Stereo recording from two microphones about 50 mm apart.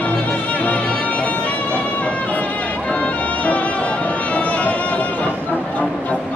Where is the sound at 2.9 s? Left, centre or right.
Left.